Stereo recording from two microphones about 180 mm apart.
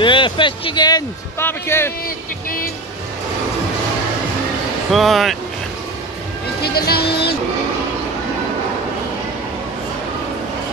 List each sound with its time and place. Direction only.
0.0 s speech: 25° left (ahead or behind)
2.0 s a sound: 55° left (ahead or behind)
4.9 s speech: centre (ahead or behind)
6.6 s speech: 60° left (ahead or behind)